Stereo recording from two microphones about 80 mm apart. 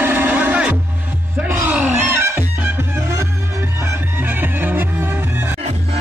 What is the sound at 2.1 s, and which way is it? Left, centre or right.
Music, right.